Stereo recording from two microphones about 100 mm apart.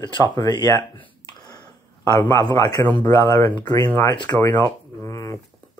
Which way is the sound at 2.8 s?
20° left (ahead or behind).